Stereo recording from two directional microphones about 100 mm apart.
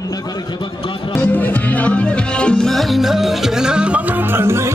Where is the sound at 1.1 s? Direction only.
20° left (ahead or behind).